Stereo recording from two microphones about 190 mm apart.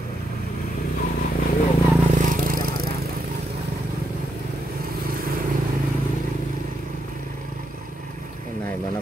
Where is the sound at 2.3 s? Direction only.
50° right (ahead or behind).